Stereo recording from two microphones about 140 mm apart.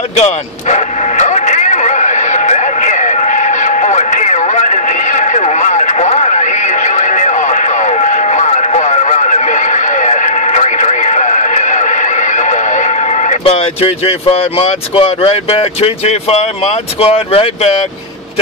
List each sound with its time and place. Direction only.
0.1 s vehicle: 55° left (ahead or behind)
17.0 s speech: 45° left (ahead or behind)